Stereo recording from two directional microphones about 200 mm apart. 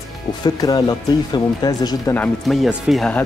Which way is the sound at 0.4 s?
20° left (ahead or behind).